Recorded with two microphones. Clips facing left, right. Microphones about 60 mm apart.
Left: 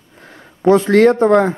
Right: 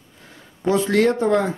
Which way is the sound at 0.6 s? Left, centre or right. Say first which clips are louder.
Left 7 dB; left.